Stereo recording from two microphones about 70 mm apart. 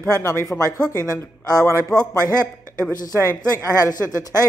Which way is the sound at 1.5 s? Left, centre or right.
Right.